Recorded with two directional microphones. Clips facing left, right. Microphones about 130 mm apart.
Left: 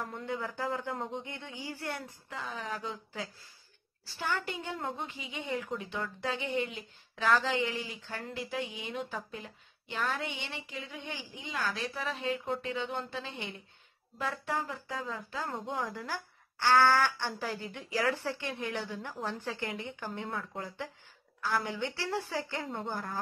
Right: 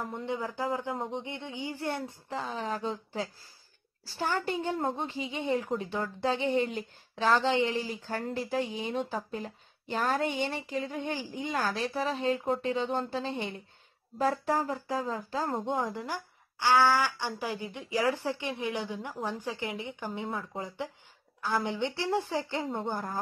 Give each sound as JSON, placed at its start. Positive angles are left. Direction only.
{"t": 0.0, "sound": "a woman's voice", "side_deg": -20}